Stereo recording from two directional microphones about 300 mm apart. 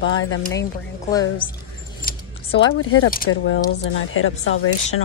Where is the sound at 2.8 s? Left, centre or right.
Left.